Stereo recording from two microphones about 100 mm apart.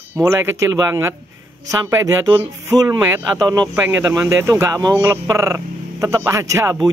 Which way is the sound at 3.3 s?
40° right (ahead or behind).